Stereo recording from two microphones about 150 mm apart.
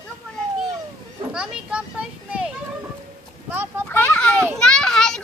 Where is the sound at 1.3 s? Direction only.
5° right (ahead or behind).